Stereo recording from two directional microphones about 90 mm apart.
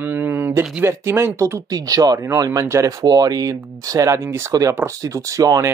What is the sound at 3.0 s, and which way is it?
Speech, 45° right (ahead or behind).